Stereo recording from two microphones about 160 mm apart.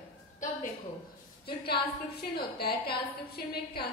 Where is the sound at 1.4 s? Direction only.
85° left.